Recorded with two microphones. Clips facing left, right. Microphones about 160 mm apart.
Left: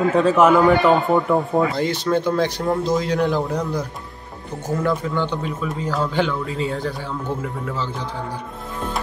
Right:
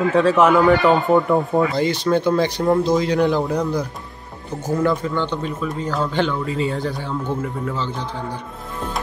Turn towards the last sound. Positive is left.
turn(degrees=5)  # may be behind; listen again after turning